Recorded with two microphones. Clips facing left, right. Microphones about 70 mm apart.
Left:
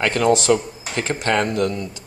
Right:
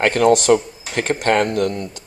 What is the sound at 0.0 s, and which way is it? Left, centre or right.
Speech, right.